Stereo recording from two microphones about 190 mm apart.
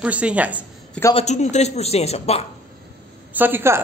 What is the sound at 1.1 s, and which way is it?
Speech, 35° left (ahead or behind).